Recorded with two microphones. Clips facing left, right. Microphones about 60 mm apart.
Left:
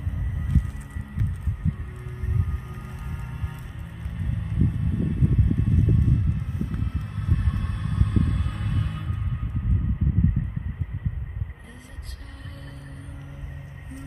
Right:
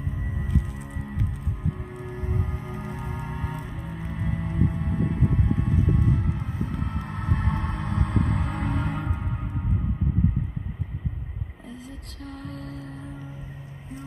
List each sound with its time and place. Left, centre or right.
2.1 s music: right
4.1 s hum: right
5.6 s music: right
12.4 s music: right